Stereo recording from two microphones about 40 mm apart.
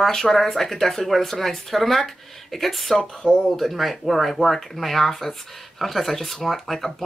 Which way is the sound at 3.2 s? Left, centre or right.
Left.